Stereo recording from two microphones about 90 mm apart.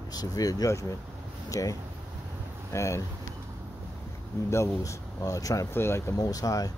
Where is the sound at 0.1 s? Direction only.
45° left (ahead or behind).